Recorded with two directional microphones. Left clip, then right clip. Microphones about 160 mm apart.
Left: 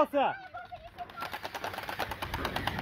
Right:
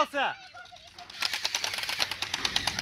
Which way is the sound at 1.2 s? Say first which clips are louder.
Right 8 dB; 55° left (ahead or behind).